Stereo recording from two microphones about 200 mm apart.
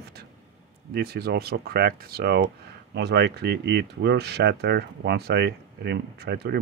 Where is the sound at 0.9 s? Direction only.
55° right (ahead or behind).